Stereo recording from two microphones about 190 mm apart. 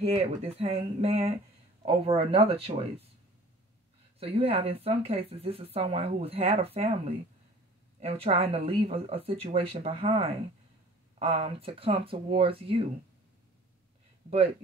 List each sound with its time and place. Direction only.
0.0 s speech: 30° right (ahead or behind)
4.2 s speech: 30° right (ahead or behind)